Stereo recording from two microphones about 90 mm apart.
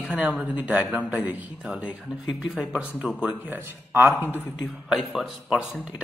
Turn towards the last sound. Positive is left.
turn(degrees=-5)  # may be behind; listen again after turning